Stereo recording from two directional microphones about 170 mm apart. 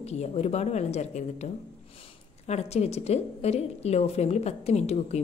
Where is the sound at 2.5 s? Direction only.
40° left (ahead or behind).